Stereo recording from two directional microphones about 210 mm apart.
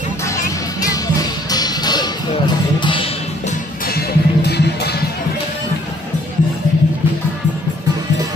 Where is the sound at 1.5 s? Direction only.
20° left (ahead or behind).